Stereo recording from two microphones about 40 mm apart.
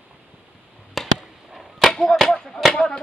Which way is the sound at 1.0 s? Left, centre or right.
Centre.